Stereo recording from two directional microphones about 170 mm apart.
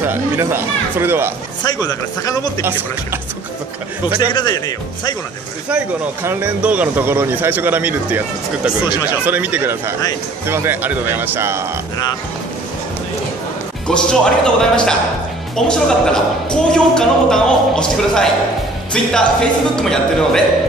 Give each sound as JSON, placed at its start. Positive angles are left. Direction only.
{"t": 0.0, "sound": "speech", "side_deg": -15}
{"t": 1.6, "sound": "speech", "side_deg": 25}
{"t": 4.3, "sound": "speech", "side_deg": 25}
{"t": 6.2, "sound": "speech", "side_deg": -10}
{"t": 13.8, "sound": "speech", "side_deg": 5}